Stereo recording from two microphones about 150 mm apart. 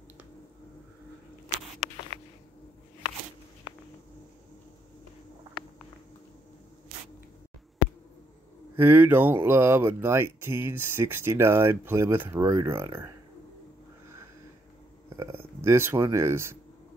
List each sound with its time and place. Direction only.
8.7 s speech: 15° right (ahead or behind)
15.1 s speech: 15° right (ahead or behind)